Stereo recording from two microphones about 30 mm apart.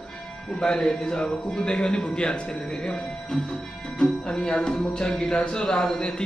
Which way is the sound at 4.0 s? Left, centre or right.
Left.